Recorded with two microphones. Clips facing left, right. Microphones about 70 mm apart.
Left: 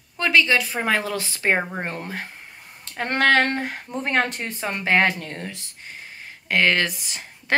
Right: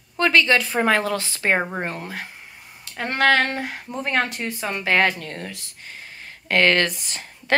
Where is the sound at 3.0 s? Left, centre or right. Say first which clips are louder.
Even; left; by 6.3 s centre.